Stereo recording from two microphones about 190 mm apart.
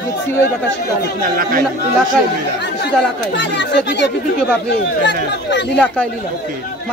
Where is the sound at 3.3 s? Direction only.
65° left (ahead or behind).